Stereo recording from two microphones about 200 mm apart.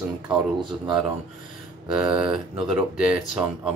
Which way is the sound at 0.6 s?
25° right (ahead or behind).